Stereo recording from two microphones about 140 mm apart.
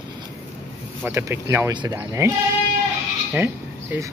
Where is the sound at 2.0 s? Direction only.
20° right (ahead or behind).